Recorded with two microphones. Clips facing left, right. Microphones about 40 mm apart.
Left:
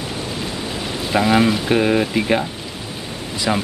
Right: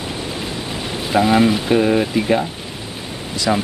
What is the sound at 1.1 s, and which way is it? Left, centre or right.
Speech, centre.